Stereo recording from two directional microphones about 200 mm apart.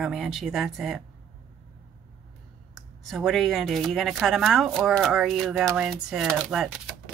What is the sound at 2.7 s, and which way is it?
Speech, centre (ahead or behind).